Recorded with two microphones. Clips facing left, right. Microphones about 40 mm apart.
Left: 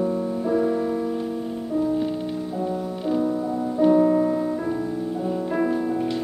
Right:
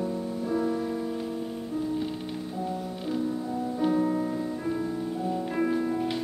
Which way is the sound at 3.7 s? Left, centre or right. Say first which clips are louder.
Left 9 dB; centre.